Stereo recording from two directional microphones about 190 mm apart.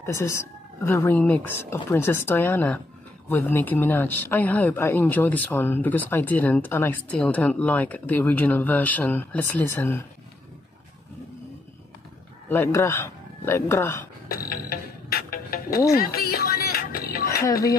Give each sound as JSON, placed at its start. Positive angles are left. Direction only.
{"t": 0.0, "sound": "speech", "side_deg": 15}
{"t": 12.4, "sound": "speech", "side_deg": 15}
{"t": 14.3, "sound": "music", "side_deg": 50}